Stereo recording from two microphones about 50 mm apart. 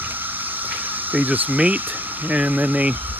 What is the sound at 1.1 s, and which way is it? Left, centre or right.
Speech, right.